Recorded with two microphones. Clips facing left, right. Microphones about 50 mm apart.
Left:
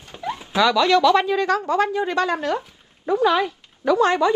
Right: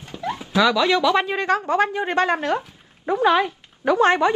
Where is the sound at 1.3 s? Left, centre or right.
Right.